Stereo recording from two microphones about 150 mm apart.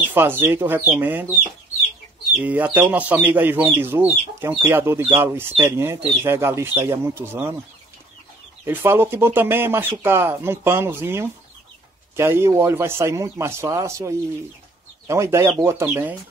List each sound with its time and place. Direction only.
0.1 s speech: 15° right (ahead or behind)
8.6 s speech: 15° right (ahead or behind)